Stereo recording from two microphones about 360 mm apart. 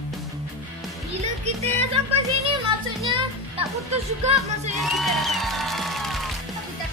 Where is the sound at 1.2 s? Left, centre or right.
Centre.